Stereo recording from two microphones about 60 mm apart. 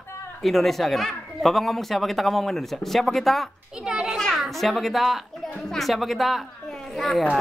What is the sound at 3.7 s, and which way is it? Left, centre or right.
Speech, centre.